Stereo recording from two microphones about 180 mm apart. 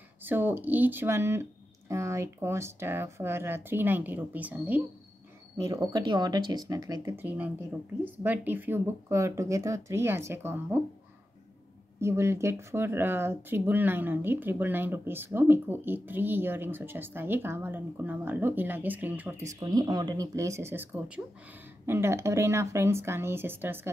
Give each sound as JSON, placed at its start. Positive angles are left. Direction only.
{"t": 0.2, "sound": "speech", "side_deg": -10}
{"t": 5.6, "sound": "speech", "side_deg": -20}
{"t": 12.0, "sound": "speech", "side_deg": -15}